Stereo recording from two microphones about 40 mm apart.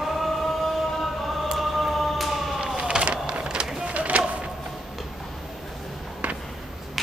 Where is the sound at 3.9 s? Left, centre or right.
Right.